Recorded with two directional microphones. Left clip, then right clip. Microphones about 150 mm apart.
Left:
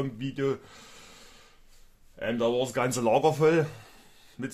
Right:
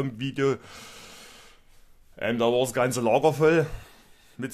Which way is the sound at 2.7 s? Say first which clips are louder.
Right 2 dB; 20° right (ahead or behind).